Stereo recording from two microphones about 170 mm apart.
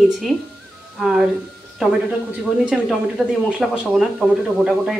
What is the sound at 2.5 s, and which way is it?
Speech, 5° right (ahead or behind).